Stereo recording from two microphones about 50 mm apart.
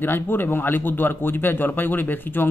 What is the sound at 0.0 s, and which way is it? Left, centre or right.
A man's voice, left.